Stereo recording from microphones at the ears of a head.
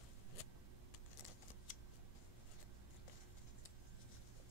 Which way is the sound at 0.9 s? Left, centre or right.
Left.